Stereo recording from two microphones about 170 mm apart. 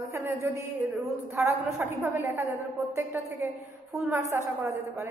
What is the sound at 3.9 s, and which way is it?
A woman's voice, 15° right (ahead or behind).